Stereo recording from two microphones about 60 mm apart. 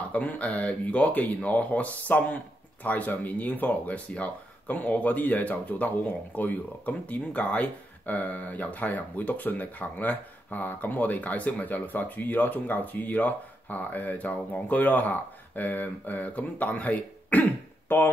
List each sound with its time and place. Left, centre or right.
0.1 s speech: left